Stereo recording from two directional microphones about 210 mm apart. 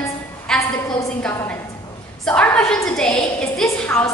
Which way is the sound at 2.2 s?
5° left (ahead or behind).